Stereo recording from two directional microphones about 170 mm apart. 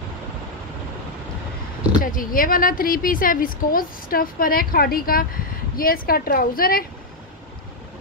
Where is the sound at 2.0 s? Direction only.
55° left (ahead or behind).